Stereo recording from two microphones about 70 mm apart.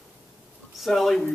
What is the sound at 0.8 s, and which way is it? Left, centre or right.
Speech, centre.